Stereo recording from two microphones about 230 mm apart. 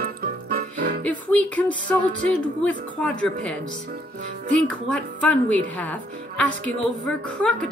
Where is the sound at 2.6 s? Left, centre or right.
Centre.